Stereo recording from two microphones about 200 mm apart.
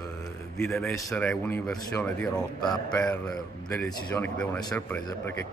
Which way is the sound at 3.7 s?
5° left (ahead or behind).